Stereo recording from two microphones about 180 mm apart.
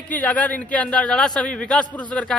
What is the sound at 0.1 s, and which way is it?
A man's voice, 10° left (ahead or behind).